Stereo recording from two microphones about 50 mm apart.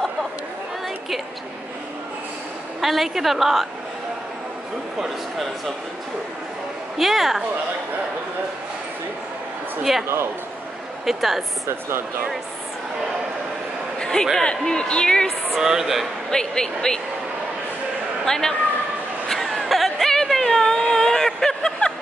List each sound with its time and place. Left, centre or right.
2.8 s a woman's voice: centre
7.0 s a woman's voice: centre
9.9 s a woman's voice: centre
11.1 s a woman's voice: centre
13.9 s a sound: centre
14.4 s speech: centre
15.5 s a woman's voice: centre
16.3 s speech: centre
18.2 s a man's voice: centre
19.2 s a sound: centre